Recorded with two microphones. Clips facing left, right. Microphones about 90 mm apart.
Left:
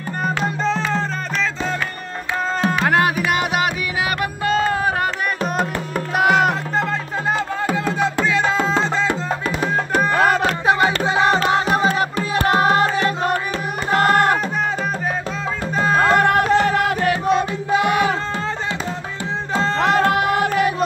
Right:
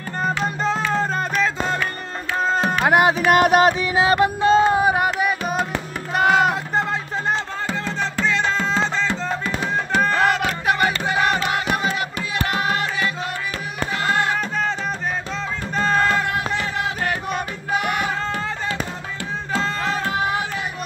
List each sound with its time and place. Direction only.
2.8 s music: 15° right (ahead or behind)
3.3 s music: 45° right (ahead or behind)
3.9 s music: 25° right (ahead or behind); by 5.3 s 10° right (ahead or behind)
6.1 s music: 5° left (ahead or behind)
7.7 s music: 10° left (ahead or behind)
10.2 s music: 35° left (ahead or behind); by 14.4 s 50° left (ahead or behind)
15.7 s music: 10° left (ahead or behind)
16.1 s music: 60° left (ahead or behind); by 16.7 s 75° left (ahead or behind)
19.5 s music: 30° left (ahead or behind)
19.8 s music: 65° left (ahead or behind)